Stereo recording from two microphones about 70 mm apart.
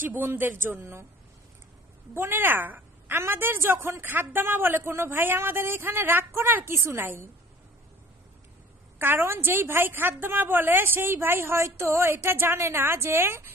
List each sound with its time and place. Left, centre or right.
0.0 s a woman's voice: right
2.1 s a woman's voice: right
8.9 s a woman's voice: right